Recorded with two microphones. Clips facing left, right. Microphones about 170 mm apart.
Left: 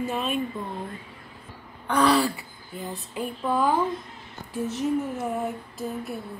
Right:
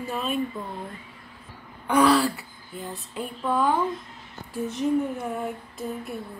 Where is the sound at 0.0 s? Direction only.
Centre (ahead or behind).